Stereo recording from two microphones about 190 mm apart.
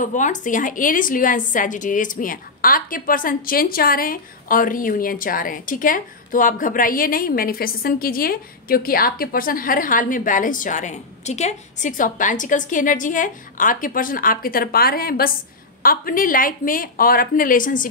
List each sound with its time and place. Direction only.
0.0 s a woman's voice: 40° left (ahead or behind)